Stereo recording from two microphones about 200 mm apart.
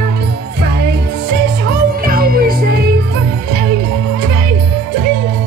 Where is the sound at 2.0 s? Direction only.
45° right (ahead or behind).